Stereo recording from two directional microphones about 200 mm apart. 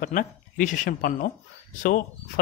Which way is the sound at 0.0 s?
40° left (ahead or behind).